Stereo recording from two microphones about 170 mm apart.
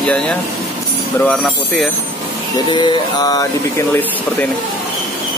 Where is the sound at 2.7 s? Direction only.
25° left (ahead or behind).